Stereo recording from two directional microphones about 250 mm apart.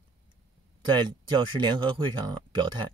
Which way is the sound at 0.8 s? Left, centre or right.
Centre.